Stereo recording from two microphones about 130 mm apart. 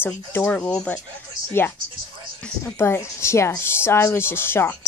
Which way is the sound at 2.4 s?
15° left (ahead or behind).